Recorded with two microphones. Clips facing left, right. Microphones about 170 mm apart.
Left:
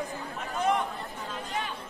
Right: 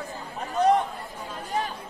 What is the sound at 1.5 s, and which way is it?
Chatter, 40° right (ahead or behind).